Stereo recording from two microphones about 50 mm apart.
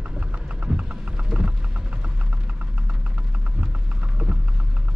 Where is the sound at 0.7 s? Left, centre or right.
Right.